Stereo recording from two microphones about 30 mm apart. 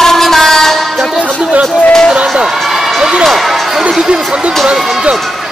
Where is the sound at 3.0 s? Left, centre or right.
Right.